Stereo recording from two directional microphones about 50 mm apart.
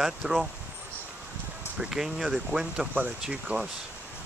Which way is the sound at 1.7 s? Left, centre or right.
Centre.